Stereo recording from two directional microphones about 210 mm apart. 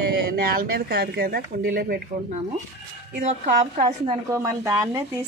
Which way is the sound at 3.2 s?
35° right (ahead or behind).